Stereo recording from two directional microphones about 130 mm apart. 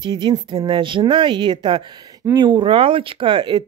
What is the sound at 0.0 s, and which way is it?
Speech, 35° right (ahead or behind).